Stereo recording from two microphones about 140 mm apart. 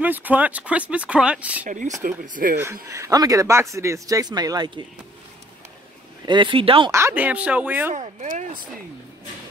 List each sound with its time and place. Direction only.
0.0 s speech: 10° right (ahead or behind)
2.0 s speech: 70° right (ahead or behind)
2.6 s speech: 20° right (ahead or behind)
6.2 s speech: 35° right (ahead or behind)
6.9 s speech: 20° right (ahead or behind)
7.9 s speech: 60° right (ahead or behind)